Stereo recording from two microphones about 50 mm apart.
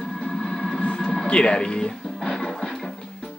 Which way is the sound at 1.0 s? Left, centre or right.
Centre.